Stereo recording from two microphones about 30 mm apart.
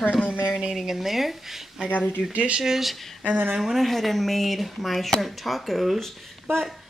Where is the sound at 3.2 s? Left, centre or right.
Right.